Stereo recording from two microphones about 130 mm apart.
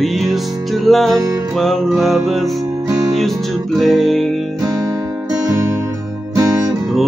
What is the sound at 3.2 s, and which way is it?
Music, centre (ahead or behind).